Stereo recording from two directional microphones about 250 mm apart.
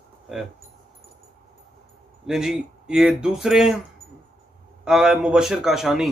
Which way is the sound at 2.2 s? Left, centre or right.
Centre.